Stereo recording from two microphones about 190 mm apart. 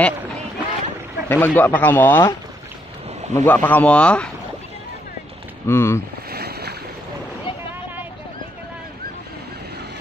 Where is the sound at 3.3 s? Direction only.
10° left (ahead or behind).